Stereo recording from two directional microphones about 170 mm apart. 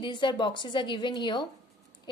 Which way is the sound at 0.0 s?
30° left (ahead or behind).